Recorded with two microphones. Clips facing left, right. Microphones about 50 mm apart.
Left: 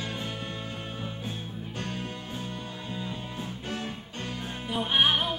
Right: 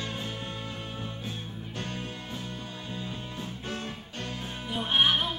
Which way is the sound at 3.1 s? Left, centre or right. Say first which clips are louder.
Left 1 dB; centre.